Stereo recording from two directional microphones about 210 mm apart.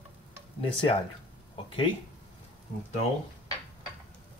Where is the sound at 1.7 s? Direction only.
25° left (ahead or behind).